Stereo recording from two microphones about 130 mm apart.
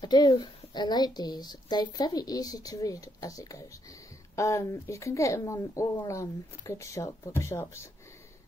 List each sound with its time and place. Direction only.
0.0 s a child's voice: 35° left (ahead or behind)